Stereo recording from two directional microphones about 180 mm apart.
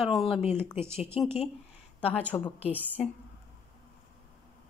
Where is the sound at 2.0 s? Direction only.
5° left (ahead or behind).